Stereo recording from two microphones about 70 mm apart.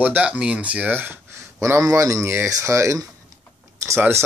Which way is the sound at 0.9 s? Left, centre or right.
Right.